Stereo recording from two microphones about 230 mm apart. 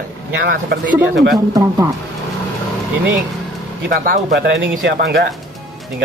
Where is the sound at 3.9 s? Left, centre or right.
Right.